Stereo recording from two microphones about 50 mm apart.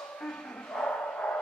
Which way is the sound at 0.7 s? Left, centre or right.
Left.